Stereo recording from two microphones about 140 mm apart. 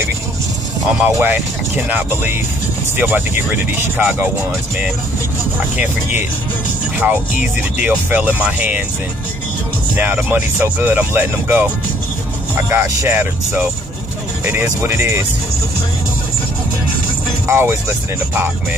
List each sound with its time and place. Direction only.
0.9 s speech: 15° right (ahead or behind)
7.0 s speech: 10° right (ahead or behind)
9.9 s speech: 15° right (ahead or behind)
17.5 s speech: 20° right (ahead or behind)